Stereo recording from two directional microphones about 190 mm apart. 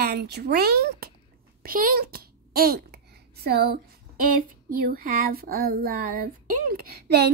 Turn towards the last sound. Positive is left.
turn(degrees=-60)  # may be behind; listen again after turning